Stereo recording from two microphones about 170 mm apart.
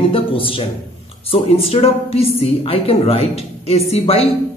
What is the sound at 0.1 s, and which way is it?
A woman's voice, 30° left (ahead or behind).